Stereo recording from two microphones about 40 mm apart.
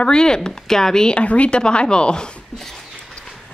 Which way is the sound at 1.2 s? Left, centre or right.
Left.